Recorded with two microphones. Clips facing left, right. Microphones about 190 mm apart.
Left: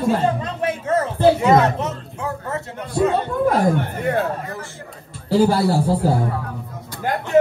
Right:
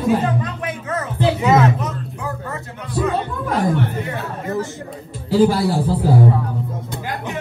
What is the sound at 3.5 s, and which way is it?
Speech, 55° left (ahead or behind).